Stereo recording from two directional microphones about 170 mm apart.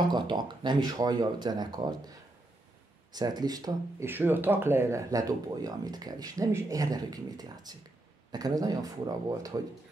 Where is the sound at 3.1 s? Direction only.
25° right (ahead or behind).